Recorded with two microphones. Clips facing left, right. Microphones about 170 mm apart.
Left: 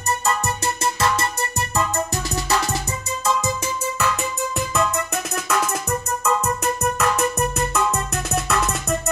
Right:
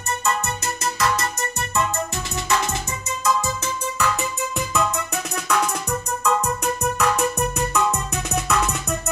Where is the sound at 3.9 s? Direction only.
Centre (ahead or behind).